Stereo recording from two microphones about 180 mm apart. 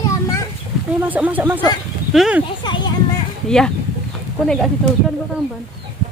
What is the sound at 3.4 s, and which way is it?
Speech, 5° left (ahead or behind).